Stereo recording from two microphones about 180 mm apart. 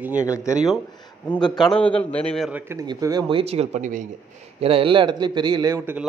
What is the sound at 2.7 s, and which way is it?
A man's voice, 20° right (ahead or behind).